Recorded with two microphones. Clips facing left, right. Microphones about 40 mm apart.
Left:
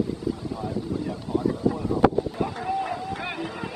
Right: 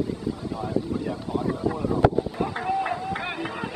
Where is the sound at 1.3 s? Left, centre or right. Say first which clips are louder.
Left 3 dB; centre.